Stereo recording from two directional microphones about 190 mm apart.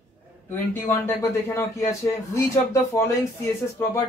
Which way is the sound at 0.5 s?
10° left (ahead or behind).